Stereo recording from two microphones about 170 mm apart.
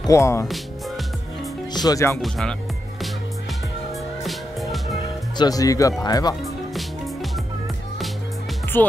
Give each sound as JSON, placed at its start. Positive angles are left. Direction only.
{"t": 0.0, "sound": "speech", "side_deg": 15}
{"t": 0.5, "sound": "music", "side_deg": 0}
{"t": 1.7, "sound": "speech", "side_deg": 25}
{"t": 2.2, "sound": "speech", "side_deg": 0}
{"t": 4.2, "sound": "music", "side_deg": 0}
{"t": 5.4, "sound": "speech", "side_deg": 20}
{"t": 6.4, "sound": "music", "side_deg": 0}
{"t": 8.7, "sound": "speech", "side_deg": 10}